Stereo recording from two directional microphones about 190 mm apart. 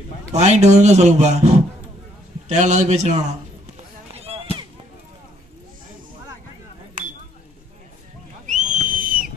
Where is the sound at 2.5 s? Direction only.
35° right (ahead or behind).